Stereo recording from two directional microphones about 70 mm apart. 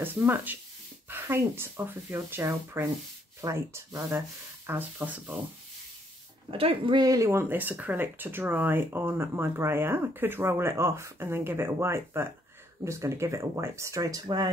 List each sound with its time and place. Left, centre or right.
0.0 s speech: right
4.6 s speech: right
6.9 s speech: right
7.2 s speech: right
7.4 s speech: right